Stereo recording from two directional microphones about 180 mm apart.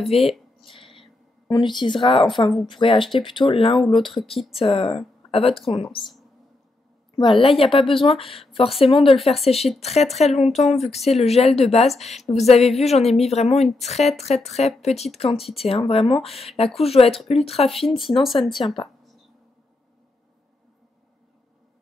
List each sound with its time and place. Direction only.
0.1 s a sound: 30° left (ahead or behind)
1.5 s speech: 25° left (ahead or behind)
3.9 s speech: centre (ahead or behind)
4.5 s a woman's voice: 30° left (ahead or behind)
7.2 s speech: 30° left (ahead or behind)
18.2 s speech: centre (ahead or behind)